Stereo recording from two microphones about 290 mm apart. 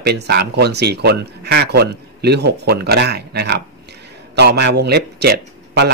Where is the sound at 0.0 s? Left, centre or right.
Right.